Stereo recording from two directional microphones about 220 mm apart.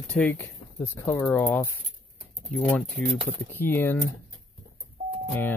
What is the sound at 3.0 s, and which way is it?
Speech, 5° left (ahead or behind).